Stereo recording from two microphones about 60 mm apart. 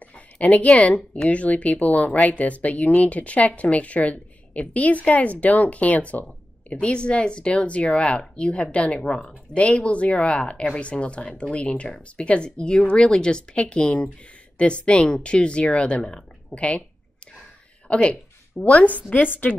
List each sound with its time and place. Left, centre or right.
0.1 s speech: left
17.8 s speech: left